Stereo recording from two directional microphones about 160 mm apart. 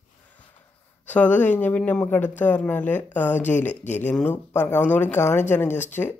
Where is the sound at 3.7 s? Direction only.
45° left (ahead or behind).